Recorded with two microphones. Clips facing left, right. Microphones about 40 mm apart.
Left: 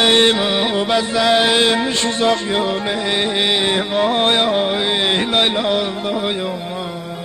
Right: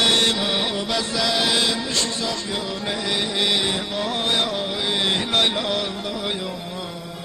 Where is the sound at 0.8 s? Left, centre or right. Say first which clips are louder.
Left 7 dB; left.